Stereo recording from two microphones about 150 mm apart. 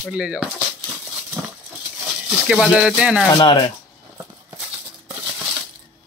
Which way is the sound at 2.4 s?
5° right (ahead or behind).